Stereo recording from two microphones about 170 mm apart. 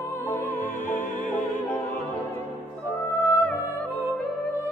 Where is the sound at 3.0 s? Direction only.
10° left (ahead or behind).